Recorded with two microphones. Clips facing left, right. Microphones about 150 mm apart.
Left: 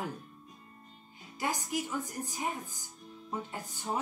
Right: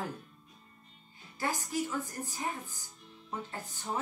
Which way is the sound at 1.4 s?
15° left (ahead or behind).